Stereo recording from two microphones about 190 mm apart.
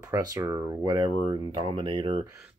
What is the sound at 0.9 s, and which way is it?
Speech, 25° right (ahead or behind).